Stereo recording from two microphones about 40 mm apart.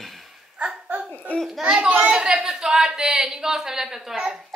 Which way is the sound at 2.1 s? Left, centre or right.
Centre.